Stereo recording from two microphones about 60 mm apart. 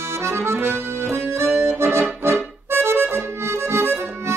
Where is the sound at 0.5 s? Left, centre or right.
Right.